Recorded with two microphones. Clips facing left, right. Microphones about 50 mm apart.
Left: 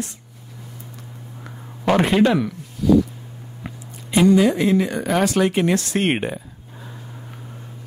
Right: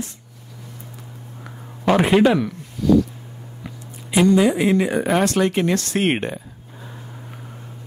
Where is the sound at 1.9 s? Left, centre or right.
Centre.